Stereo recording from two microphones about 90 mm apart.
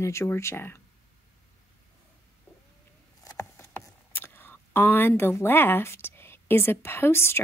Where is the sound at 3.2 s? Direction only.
40° left (ahead or behind).